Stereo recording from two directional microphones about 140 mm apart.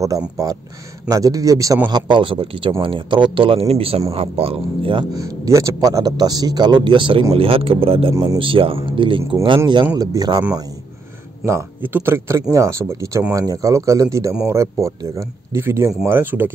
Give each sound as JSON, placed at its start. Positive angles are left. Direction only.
{"t": 1.0, "sound": "a man's voice", "side_deg": -25}
{"t": 1.9, "sound": "speech", "side_deg": -35}
{"t": 5.1, "sound": "a man's voice", "side_deg": -25}
{"t": 8.1, "sound": "a man's voice", "side_deg": -25}
{"t": 8.4, "sound": "speech", "side_deg": -40}
{"t": 9.9, "sound": "a man's voice", "side_deg": -25}
{"t": 11.4, "sound": "a man's voice", "side_deg": -15}